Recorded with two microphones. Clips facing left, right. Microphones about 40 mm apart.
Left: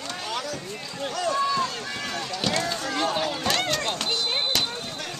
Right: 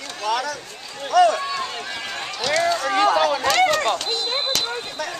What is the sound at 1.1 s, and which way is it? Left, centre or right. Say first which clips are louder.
Speech: right 12 dB; right.